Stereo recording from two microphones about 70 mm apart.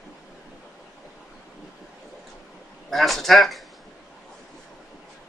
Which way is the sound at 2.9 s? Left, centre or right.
Centre.